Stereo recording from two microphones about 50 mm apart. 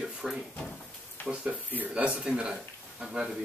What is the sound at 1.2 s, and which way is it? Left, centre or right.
Speech, left.